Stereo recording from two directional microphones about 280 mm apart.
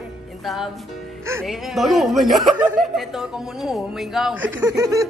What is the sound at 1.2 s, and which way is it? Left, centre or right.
A woman's voice, centre.